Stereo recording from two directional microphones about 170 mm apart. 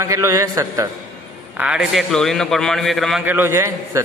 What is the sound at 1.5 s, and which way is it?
A man's voice, 5° right (ahead or behind).